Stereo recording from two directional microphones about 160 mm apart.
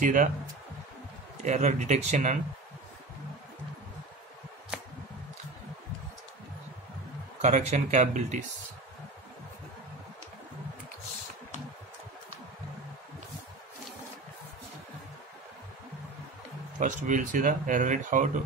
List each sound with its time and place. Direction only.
0.0 s speech: 55° right (ahead or behind)
1.4 s speech: 45° right (ahead or behind)
7.4 s speech: 45° right (ahead or behind)
16.8 s speech: 55° right (ahead or behind)